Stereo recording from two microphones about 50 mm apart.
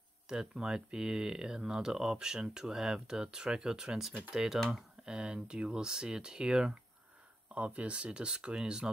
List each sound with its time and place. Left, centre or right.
0.3 s speech: centre
7.5 s speech: right